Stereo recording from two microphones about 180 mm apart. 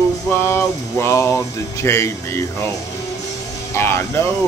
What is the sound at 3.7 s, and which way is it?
Speech, 15° left (ahead or behind).